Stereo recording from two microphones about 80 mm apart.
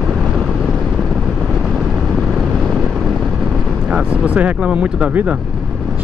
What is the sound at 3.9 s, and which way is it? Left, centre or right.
Speech, centre.